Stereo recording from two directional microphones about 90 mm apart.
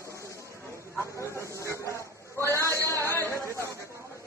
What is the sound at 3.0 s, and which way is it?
Chatter, 30° left (ahead or behind).